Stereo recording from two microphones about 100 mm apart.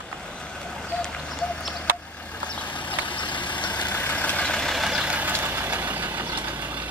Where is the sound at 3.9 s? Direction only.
15° left (ahead or behind); by 6.9 s 15° right (ahead or behind).